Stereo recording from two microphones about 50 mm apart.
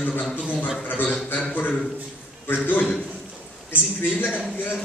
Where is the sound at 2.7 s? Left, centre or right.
Left.